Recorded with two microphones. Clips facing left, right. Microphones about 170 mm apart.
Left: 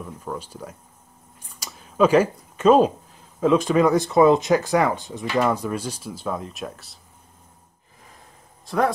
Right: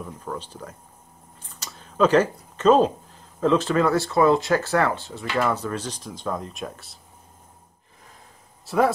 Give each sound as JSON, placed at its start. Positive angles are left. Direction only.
{"t": 0.0, "sound": "speech", "side_deg": 10}
{"t": 1.4, "sound": "a sound", "side_deg": 10}
{"t": 3.3, "sound": "speech", "side_deg": 10}
{"t": 8.6, "sound": "speech", "side_deg": -5}